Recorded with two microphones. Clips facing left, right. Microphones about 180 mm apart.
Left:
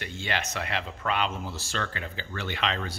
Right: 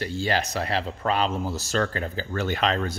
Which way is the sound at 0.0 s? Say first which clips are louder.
Right 7 dB; 35° right (ahead or behind).